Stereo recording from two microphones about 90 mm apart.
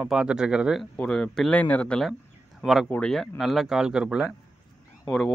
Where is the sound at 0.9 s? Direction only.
10° left (ahead or behind).